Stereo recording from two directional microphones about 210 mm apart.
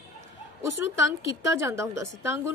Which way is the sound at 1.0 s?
15° right (ahead or behind).